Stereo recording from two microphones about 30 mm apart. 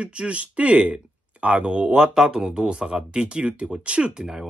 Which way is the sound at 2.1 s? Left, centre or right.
Right.